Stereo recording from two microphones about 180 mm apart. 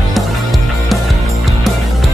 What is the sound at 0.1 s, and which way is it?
Music, centre (ahead or behind).